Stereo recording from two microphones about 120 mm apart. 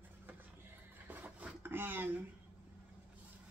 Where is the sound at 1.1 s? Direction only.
15° right (ahead or behind).